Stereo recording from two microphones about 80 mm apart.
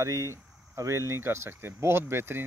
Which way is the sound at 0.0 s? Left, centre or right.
Right.